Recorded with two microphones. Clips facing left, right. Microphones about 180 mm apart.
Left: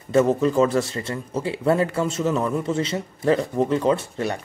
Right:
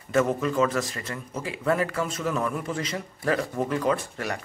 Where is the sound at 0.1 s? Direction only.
30° left (ahead or behind).